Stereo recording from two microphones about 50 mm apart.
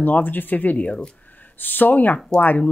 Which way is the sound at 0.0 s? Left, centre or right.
Left.